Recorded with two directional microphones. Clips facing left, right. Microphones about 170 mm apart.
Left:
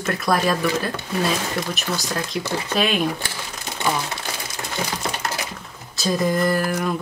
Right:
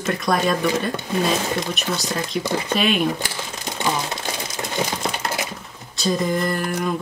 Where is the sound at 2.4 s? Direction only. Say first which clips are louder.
Right 3 dB; 15° right (ahead or behind).